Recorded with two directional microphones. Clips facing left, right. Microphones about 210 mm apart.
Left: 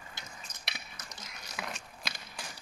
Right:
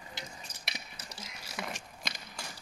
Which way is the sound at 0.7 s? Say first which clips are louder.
Right 2 dB; 30° right (ahead or behind).